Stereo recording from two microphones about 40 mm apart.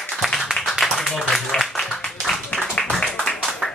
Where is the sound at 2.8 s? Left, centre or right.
Left.